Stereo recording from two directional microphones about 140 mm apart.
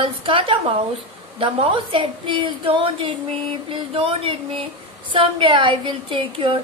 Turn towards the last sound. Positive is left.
turn(degrees=-40)  # may be behind; listen again after turning